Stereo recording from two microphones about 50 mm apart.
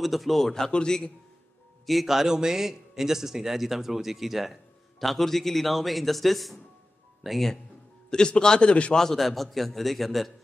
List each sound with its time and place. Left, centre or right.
0.0 s a man's voice: centre
1.9 s speech: centre
8.1 s a man's voice: centre
8.9 s speech: centre